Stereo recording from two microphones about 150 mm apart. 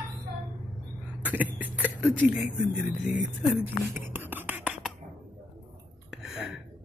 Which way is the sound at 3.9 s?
15° right (ahead or behind).